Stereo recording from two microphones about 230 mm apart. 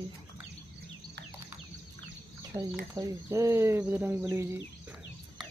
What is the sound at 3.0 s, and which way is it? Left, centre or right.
Speech, centre.